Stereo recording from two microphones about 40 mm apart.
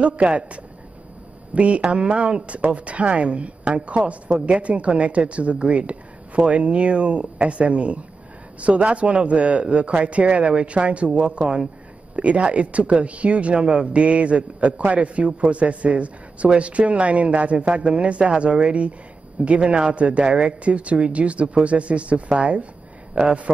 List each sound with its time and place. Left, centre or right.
0.0 s a woman's voice: right